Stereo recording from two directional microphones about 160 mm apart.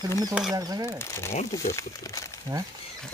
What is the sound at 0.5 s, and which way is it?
Speech, 20° right (ahead or behind).